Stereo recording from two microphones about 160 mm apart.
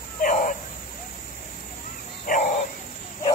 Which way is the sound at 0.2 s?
55° left (ahead or behind).